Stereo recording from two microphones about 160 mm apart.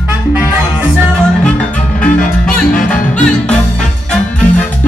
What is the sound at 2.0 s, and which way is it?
Music, 5° left (ahead or behind).